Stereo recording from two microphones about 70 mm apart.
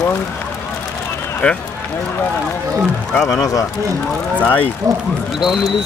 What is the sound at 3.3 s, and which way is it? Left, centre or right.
Speech, left.